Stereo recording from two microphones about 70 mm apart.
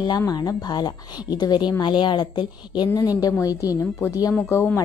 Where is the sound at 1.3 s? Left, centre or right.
Left.